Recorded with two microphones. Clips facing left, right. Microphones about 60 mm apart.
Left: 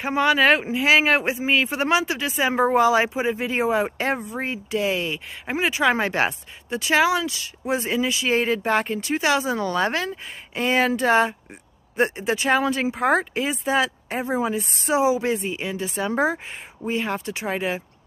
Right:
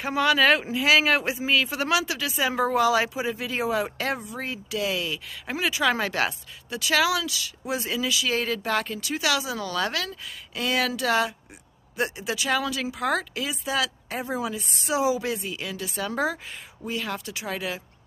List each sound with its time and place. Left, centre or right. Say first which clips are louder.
0.0 s speech: left 2 dB; left
14.1 s speech: left 5 dB; left
14.4 s a woman's voice: left 6 dB; left
15.0 s speech: left 4 dB; left